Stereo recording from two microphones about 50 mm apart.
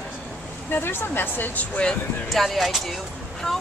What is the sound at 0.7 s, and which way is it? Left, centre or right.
Speech, left.